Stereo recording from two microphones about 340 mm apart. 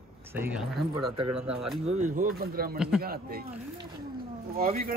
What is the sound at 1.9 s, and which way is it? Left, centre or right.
Speech, right.